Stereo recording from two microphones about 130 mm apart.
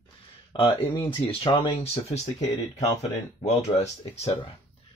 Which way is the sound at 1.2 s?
45° left (ahead or behind).